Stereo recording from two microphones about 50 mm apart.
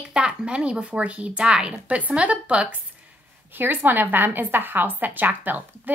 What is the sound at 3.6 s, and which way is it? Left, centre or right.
A woman's voice, right.